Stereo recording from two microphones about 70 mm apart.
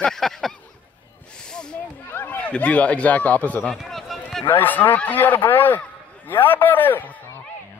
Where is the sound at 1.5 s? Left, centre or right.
Centre.